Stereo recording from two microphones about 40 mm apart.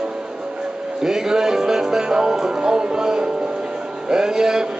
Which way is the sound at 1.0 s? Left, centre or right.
Centre.